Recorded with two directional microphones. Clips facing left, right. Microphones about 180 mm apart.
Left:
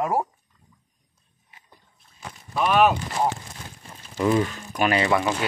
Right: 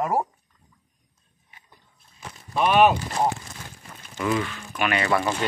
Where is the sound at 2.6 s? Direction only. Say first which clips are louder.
Right 1 dB; centre (ahead or behind).